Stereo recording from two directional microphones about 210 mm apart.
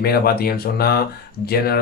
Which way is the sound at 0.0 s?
45° left (ahead or behind).